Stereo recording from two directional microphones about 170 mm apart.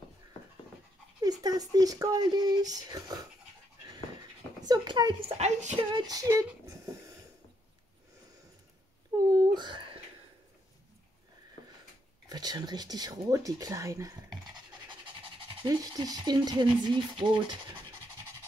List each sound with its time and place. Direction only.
1.4 s speech: 20° right (ahead or behind)
4.6 s speech: 25° right (ahead or behind)
5.4 s a sound: 40° right (ahead or behind)
5.9 s speech: 25° right (ahead or behind)
9.3 s a sound: 25° right (ahead or behind)
12.3 s speech: 25° right (ahead or behind)